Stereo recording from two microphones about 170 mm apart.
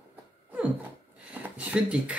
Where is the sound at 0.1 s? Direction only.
10° right (ahead or behind).